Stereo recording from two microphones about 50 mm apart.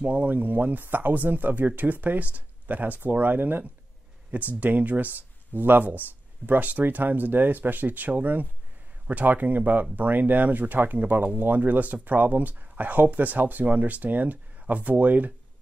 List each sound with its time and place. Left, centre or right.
0.0 s speech: right